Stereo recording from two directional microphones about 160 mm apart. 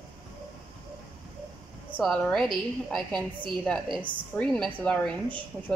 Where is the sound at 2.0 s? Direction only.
5° left (ahead or behind).